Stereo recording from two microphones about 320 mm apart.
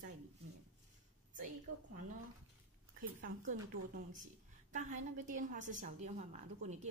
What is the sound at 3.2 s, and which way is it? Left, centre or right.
A woman's voice, right.